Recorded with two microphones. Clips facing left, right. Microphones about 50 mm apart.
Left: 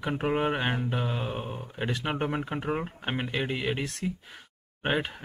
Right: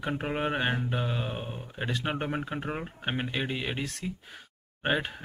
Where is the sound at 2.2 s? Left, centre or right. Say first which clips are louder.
Left 2 dB; left.